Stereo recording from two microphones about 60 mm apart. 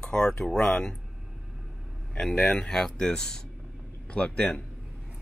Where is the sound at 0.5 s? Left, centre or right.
Centre.